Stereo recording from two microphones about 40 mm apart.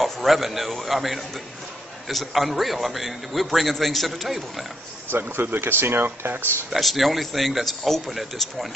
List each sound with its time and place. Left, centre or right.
0.0 s a man's voice: centre
5.1 s speech: right
6.7 s a man's voice: centre